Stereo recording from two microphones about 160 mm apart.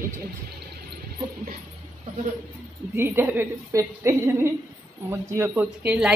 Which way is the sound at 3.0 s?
15° right (ahead or behind).